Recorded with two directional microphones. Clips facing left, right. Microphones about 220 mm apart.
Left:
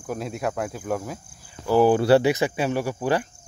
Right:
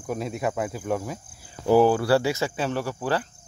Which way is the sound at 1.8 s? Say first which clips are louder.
Left 4 dB; 20° left (ahead or behind).